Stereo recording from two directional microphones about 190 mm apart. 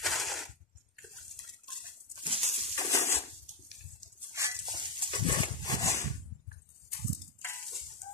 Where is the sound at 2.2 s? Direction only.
30° right (ahead or behind).